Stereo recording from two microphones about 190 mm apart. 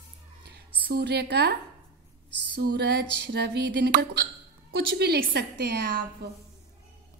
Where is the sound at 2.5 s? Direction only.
60° right (ahead or behind).